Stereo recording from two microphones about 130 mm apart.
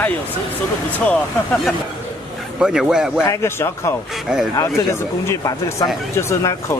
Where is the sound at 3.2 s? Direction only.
20° left (ahead or behind).